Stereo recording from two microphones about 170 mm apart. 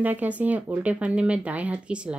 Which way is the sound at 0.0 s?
10° right (ahead or behind).